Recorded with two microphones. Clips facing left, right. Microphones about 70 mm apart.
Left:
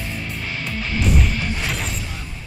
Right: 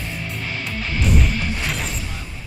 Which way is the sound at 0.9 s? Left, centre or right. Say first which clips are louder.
Even; centre.